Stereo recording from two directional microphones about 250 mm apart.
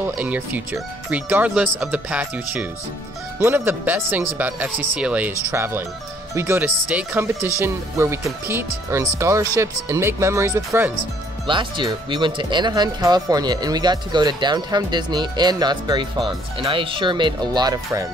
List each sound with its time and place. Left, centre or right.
0.2 s speech: centre